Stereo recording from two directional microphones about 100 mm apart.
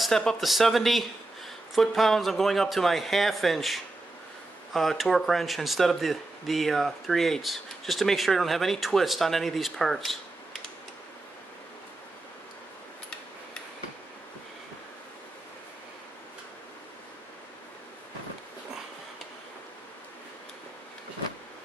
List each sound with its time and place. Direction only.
0.0 s speech: 5° left (ahead or behind)